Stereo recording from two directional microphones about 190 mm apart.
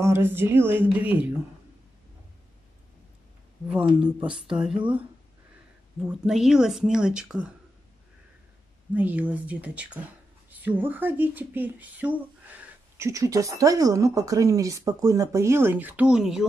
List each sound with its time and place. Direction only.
0.0 s speech: 10° right (ahead or behind)
3.6 s speech: 5° right (ahead or behind)
5.9 s speech: 5° right (ahead or behind)
8.9 s speech: 10° right (ahead or behind)